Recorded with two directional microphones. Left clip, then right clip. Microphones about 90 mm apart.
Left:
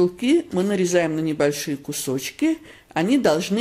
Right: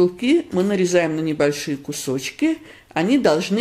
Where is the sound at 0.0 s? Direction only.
40° left (ahead or behind).